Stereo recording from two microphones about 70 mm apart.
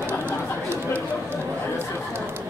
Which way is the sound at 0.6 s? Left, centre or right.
Right.